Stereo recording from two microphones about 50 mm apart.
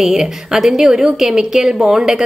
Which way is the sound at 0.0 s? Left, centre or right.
Centre.